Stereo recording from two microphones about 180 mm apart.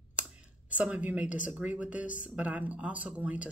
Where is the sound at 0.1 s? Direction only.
5° right (ahead or behind).